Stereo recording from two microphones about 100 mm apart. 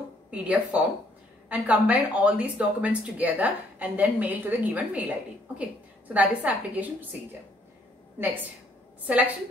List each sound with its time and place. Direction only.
0.3 s speech: 15° right (ahead or behind)
6.1 s speech: 15° right (ahead or behind)
9.0 s speech: 15° right (ahead or behind)